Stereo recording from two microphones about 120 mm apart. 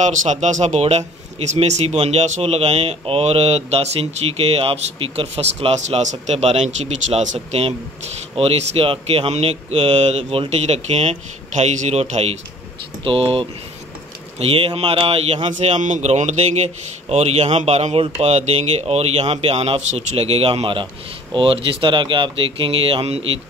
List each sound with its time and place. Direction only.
0.0 s speech: 85° right; by 12.4 s 60° right (ahead or behind)
13.0 s speech: 50° right (ahead or behind)
15.6 s speech: 85° right; by 23.2 s 55° right (ahead or behind)